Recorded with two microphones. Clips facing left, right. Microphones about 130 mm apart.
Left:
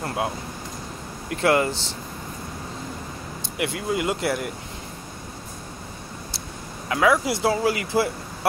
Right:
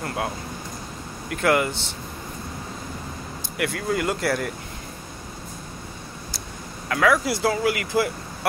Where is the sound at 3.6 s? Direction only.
20° left (ahead or behind).